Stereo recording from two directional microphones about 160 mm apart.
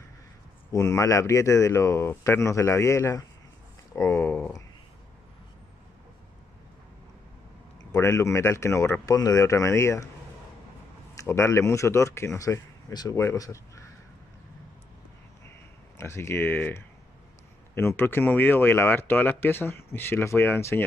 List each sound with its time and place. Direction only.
0.7 s speech: 20° left (ahead or behind)
7.9 s speech: 20° left (ahead or behind)
11.1 s speech: 15° left (ahead or behind)
16.0 s speech: 15° left (ahead or behind)